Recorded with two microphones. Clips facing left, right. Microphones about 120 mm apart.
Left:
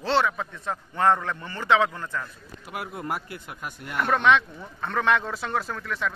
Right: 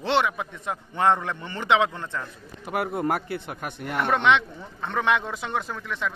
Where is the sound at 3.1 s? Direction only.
60° right (ahead or behind).